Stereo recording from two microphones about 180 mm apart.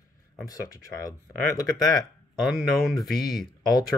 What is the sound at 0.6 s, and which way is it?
Speech, 15° left (ahead or behind).